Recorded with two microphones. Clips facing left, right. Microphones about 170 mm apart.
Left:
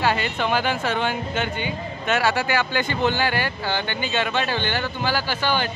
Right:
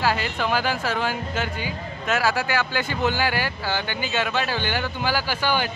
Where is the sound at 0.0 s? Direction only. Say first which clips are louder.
Left 1 dB; centre (ahead or behind).